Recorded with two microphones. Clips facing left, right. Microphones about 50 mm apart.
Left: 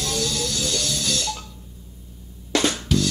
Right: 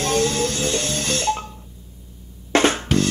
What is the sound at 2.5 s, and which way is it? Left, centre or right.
Drum, right.